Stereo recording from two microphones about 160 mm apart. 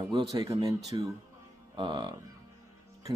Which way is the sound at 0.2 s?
20° right (ahead or behind).